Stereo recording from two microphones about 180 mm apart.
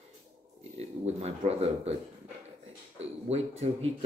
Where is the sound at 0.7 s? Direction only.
35° right (ahead or behind).